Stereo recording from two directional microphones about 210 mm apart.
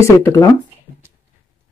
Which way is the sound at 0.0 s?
15° left (ahead or behind).